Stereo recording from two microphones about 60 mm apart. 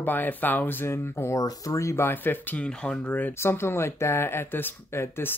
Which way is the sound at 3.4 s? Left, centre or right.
Left.